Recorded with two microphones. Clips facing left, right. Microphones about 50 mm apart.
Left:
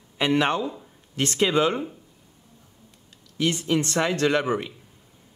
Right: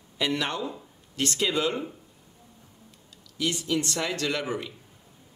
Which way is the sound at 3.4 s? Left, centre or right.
Left.